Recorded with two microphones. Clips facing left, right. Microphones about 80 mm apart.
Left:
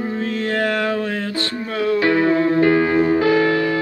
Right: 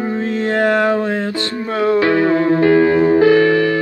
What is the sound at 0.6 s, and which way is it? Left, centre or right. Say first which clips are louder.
Music: right 7 dB; right.